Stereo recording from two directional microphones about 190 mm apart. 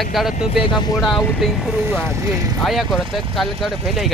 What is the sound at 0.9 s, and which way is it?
Speech, centre (ahead or behind).